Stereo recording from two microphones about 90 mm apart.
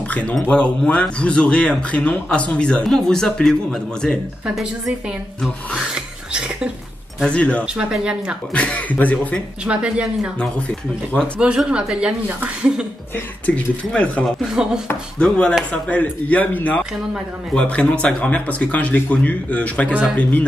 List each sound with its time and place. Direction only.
0.1 s speech: 15° left (ahead or behind)
5.9 s a sound: 10° right (ahead or behind)
7.2 s speech: 15° left (ahead or behind)
7.6 s speech: 10° right (ahead or behind)
8.5 s speech: 15° left (ahead or behind)
9.7 s speech: 10° right (ahead or behind)
11.3 s speech: 10° right (ahead or behind)
12.3 s speech: 20° right (ahead or behind)
13.1 s speech: 15° left (ahead or behind)
14.4 s speech: 10° right (ahead or behind)
15.1 s speech: 10° left (ahead or behind)